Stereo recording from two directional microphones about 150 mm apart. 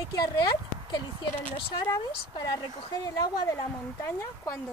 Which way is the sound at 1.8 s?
25° left (ahead or behind).